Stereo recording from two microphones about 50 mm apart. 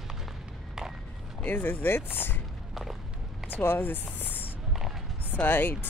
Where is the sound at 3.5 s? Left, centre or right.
Left.